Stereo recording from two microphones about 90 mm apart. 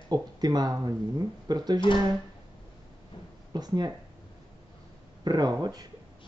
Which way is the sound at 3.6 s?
50° right (ahead or behind).